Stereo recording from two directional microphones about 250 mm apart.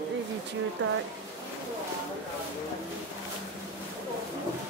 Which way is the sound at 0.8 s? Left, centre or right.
Right.